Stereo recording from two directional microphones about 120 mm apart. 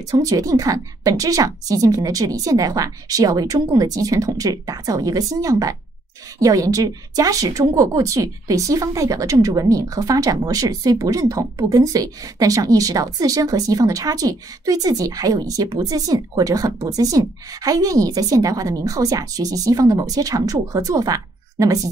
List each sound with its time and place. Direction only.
0.1 s a woman's voice: 30° right (ahead or behind)